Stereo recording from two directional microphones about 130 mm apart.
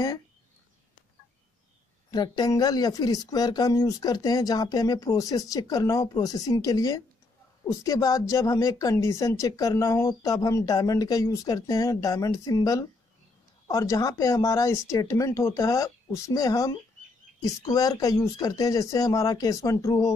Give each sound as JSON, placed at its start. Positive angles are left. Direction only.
{"t": 2.0, "sound": "speech", "side_deg": 35}